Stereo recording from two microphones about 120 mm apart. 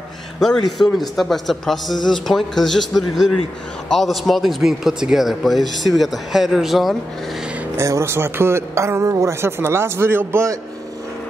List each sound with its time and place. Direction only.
0.4 s a man's voice: 5° left (ahead or behind)
7.7 s speech: 25° right (ahead or behind)